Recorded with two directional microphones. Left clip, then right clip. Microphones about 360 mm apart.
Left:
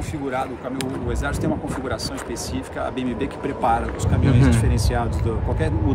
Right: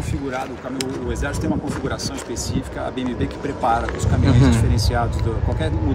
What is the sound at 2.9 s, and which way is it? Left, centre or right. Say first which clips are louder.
Speech: right 1 dB; centre.